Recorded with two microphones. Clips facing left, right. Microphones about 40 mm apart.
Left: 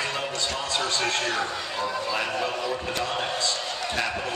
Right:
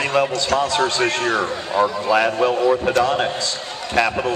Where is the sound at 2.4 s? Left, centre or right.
Right.